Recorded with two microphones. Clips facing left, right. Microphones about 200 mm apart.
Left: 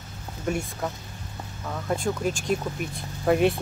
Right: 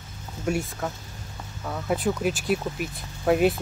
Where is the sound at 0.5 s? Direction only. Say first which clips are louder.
Right 1 dB; centre (ahead or behind).